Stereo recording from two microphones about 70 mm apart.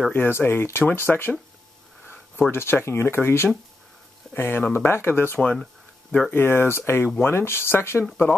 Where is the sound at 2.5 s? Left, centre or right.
Left.